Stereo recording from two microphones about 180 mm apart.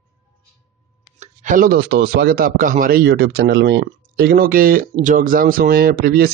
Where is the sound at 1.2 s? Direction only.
45° right (ahead or behind).